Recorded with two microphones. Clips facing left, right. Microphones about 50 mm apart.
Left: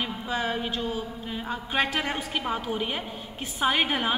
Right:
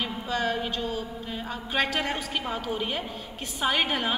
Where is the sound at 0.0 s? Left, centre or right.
Centre.